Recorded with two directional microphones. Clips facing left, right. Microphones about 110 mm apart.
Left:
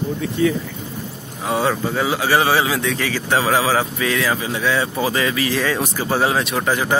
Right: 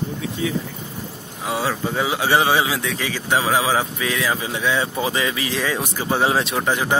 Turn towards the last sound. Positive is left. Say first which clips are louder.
# left 1 dB
turn(degrees=-15)  # may be behind; listen again after turning